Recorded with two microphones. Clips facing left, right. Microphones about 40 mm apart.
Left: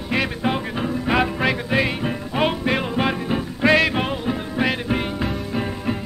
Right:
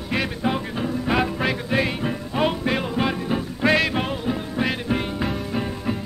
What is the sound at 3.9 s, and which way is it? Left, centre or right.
Music, centre.